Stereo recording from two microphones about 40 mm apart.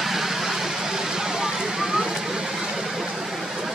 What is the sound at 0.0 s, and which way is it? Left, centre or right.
Vehicle, centre.